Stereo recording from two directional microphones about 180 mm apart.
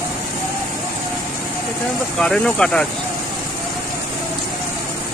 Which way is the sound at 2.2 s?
5° left (ahead or behind).